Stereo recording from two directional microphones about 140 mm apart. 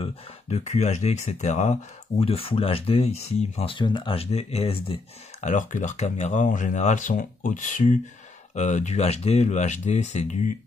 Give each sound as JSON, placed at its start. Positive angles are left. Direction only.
{"t": 0.0, "sound": "speech", "side_deg": 50}
{"t": 5.4, "sound": "speech", "side_deg": 65}